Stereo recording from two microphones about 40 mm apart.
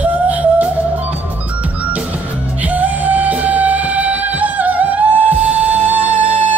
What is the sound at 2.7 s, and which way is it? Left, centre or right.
Music, right.